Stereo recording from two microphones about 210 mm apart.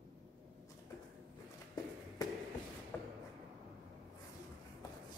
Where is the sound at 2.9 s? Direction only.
5° left (ahead or behind).